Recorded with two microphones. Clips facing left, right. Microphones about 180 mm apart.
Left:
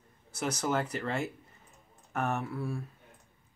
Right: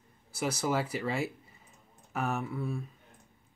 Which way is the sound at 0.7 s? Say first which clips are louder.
Even; 5° right (ahead or behind).